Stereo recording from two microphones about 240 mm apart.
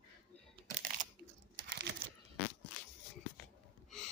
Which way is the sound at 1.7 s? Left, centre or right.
Right.